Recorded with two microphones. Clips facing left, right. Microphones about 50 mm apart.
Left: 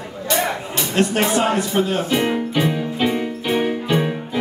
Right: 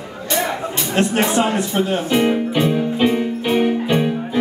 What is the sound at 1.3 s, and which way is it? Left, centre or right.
Speech, centre.